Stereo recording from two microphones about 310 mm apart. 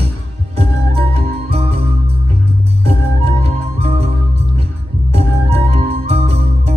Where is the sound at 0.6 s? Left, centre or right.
Centre.